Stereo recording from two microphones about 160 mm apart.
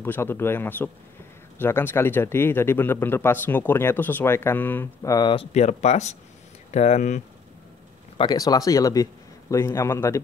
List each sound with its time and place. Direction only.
0.0 s speech: 15° left (ahead or behind); by 7.2 s 50° left (ahead or behind)
8.2 s a man's voice: 25° left (ahead or behind)